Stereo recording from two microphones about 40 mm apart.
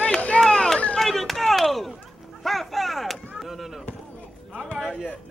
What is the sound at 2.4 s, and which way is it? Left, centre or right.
Artillery fire, centre.